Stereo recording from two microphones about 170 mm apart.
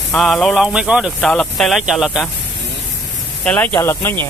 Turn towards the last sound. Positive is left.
turn(degrees=15)  # may be behind; listen again after turning